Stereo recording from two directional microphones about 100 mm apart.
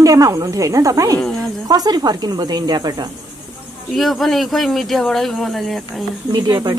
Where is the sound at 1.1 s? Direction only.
10° left (ahead or behind).